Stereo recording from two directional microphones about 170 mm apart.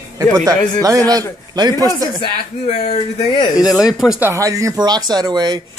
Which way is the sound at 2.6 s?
40° left (ahead or behind).